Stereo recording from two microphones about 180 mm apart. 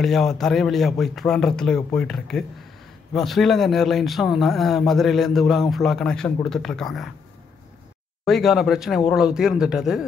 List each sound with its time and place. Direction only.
0.0 s speech: centre (ahead or behind)
8.3 s speech: centre (ahead or behind)